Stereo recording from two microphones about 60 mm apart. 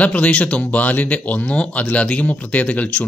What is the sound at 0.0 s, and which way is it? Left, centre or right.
Speech, left.